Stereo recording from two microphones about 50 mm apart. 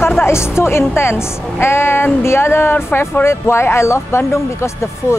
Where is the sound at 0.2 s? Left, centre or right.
Left.